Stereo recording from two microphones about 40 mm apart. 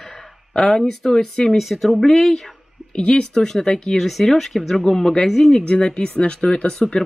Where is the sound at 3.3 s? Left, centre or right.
Centre.